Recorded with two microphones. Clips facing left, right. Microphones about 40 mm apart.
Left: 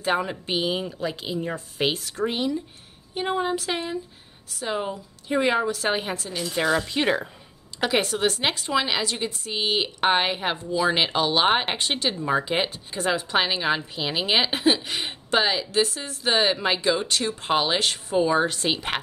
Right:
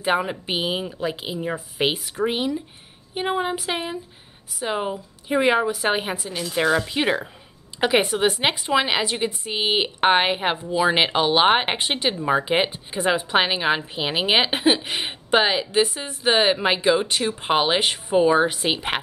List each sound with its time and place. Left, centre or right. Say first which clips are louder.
0.0 s a woman's voice: right 2 dB; centre